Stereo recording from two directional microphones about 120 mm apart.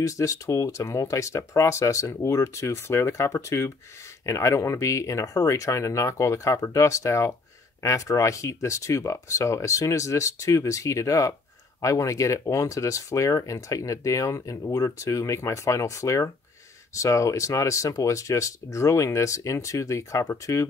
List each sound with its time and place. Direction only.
0.0 s speech: 25° left (ahead or behind)